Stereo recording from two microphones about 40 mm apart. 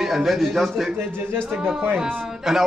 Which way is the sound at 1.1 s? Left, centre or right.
Right.